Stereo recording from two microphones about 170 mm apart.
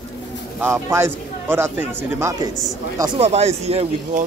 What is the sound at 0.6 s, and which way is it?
Speech, 15° right (ahead or behind).